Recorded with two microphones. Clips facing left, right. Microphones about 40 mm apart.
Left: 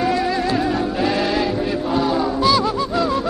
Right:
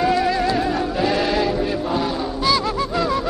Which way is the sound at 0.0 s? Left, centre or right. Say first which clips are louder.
Right 1 dB; centre.